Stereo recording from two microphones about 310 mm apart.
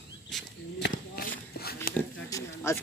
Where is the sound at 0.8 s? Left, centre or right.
Left.